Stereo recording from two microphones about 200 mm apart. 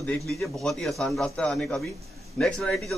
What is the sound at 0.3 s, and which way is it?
A man's voice, centre (ahead or behind).